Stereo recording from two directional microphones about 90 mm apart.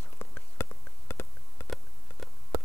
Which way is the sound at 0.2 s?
30° left (ahead or behind).